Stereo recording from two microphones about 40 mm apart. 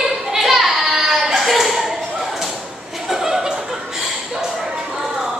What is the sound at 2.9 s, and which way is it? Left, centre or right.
Chuckle, centre.